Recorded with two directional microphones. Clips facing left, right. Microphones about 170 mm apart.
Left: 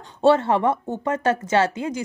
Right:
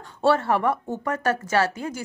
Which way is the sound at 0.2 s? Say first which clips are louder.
Left 3 dB; 20° left (ahead or behind).